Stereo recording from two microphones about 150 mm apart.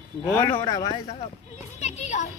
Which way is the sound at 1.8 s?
45° left (ahead or behind).